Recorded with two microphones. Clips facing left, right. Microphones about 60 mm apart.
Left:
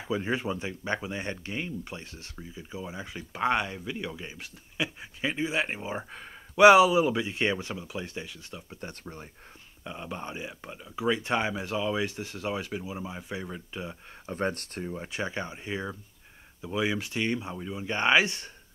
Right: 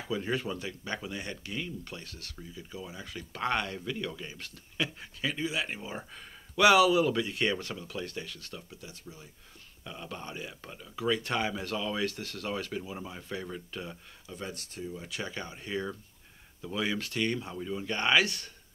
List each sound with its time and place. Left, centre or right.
0.1 s speech: left
5.2 s speech: left
8.8 s speech: left
9.8 s speech: left
14.2 s speech: left
15.0 s speech: left